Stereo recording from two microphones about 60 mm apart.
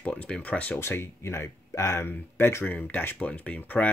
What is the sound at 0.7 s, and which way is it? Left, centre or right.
Speech, left.